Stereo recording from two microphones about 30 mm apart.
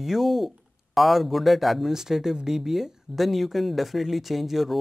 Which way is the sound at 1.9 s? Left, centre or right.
Centre.